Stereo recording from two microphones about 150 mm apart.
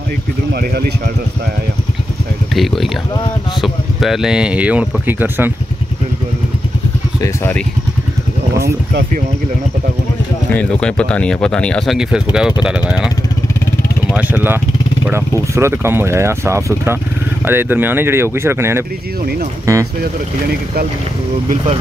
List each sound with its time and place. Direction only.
0.5 s speech: 90° right
2.5 s speech: centre (ahead or behind)
8.6 s speech: 90° right
10.5 s speech: 5° left (ahead or behind)
14.1 s speech: 15° right (ahead or behind)